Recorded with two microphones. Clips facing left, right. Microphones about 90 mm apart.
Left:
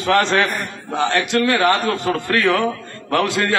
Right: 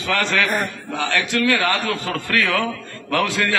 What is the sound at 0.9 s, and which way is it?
A man's voice, 25° left (ahead or behind).